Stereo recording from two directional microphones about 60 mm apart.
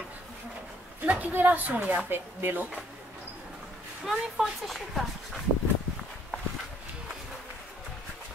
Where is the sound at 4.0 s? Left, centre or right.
Centre.